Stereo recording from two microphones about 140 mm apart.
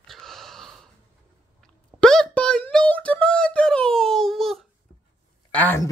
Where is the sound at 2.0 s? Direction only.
5° left (ahead or behind).